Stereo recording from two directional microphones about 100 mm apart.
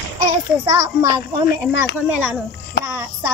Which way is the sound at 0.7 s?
25° right (ahead or behind).